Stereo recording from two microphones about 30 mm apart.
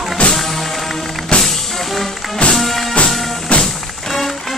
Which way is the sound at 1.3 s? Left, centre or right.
Left.